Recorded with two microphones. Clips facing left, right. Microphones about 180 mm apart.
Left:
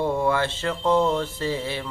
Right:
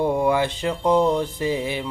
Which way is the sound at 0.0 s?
15° right (ahead or behind).